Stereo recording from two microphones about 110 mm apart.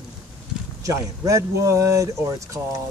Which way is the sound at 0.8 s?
30° right (ahead or behind).